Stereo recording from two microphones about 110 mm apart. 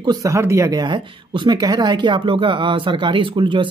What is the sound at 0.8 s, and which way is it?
Speech, 45° right (ahead or behind).